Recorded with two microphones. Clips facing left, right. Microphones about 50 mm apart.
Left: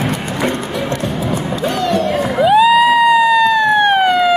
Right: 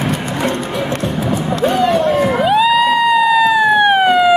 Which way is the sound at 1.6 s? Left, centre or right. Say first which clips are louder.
Right 4 dB; centre.